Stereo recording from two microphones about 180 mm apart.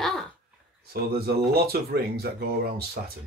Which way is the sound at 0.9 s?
60° right (ahead or behind).